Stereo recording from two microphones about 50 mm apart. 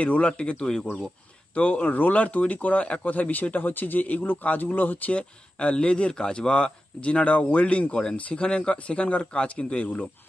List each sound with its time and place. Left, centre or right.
0.0 s speech: left
5.6 s speech: left